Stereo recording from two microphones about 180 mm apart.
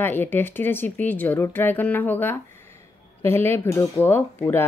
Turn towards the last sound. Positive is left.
turn(degrees=10)  # may be behind; listen again after turning